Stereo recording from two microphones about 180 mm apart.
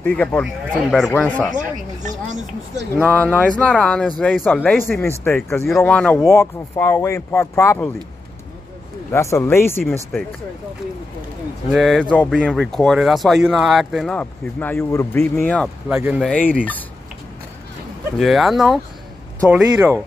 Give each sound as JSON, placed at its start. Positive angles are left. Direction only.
{"t": 0.0, "sound": "speech", "side_deg": 10}
{"t": 1.5, "sound": "a sound", "side_deg": -45}
{"t": 3.2, "sound": "speech", "side_deg": 10}
{"t": 9.1, "sound": "speech", "side_deg": 15}
{"t": 11.7, "sound": "speech", "side_deg": 0}
{"t": 16.0, "sound": "speech", "side_deg": -10}
{"t": 16.3, "sound": "speech", "side_deg": 10}
{"t": 18.2, "sound": "speech", "side_deg": 0}